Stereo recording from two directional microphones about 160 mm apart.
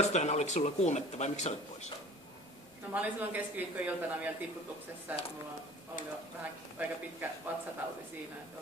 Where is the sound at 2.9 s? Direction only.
10° right (ahead or behind).